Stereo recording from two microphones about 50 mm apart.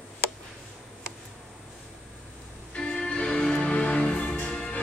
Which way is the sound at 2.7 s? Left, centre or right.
Centre.